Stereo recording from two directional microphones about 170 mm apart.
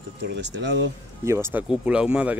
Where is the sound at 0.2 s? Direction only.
90° right.